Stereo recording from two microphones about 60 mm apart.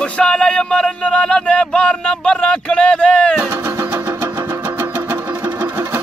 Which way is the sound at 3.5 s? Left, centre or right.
Right.